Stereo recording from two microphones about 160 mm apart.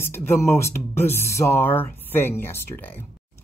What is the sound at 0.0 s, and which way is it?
Speech, 15° left (ahead or behind).